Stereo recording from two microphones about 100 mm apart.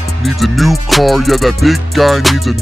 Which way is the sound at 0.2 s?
Centre (ahead or behind).